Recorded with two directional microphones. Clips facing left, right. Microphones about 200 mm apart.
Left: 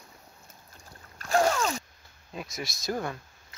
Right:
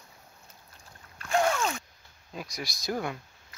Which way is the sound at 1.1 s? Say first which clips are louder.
Left 2 dB; 40° left (ahead or behind).